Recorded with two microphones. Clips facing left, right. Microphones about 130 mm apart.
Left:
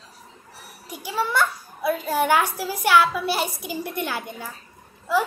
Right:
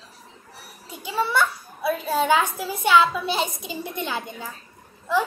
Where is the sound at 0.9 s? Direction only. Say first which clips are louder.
Right 1 dB; 15° left (ahead or behind).